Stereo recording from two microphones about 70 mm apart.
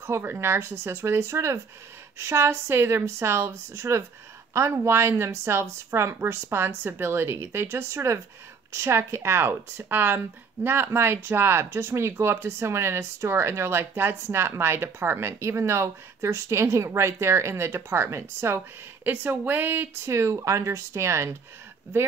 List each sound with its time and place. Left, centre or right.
0.0 s speech: right
19.0 s speech: right
20.1 s speech: right